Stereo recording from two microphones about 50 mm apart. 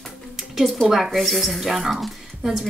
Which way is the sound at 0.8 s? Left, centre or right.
Centre.